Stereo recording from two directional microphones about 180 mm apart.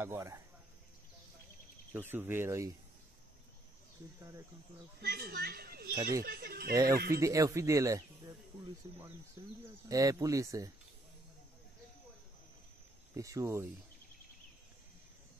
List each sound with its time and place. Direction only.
0.0 s speech: 15° right (ahead or behind)
2.0 s speech: 10° right (ahead or behind)
5.0 s a child's voice: 55° right (ahead or behind)
6.7 s speech: 20° right (ahead or behind)
9.4 s speech: 15° right (ahead or behind)
13.1 s speech: 15° right (ahead or behind)